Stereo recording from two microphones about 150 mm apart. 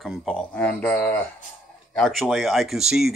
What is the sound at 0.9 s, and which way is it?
Speech, 20° left (ahead or behind).